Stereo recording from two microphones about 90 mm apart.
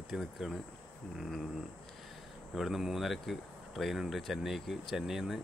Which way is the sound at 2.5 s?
5° right (ahead or behind).